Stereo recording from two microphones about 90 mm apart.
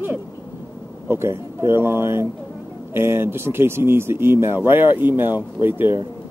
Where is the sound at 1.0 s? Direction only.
25° right (ahead or behind).